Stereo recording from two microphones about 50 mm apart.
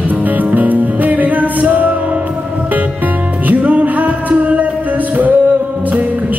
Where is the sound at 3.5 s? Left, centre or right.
Right.